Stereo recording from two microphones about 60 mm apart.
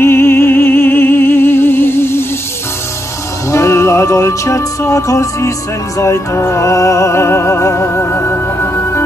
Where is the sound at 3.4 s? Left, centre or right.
Left.